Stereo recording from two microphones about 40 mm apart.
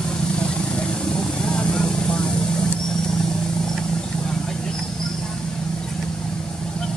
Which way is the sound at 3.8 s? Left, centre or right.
Centre.